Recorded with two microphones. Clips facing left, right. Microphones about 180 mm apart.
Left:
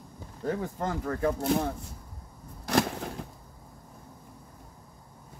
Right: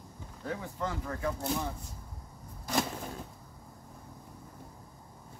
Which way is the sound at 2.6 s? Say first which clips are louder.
Left 5 dB; 80° left.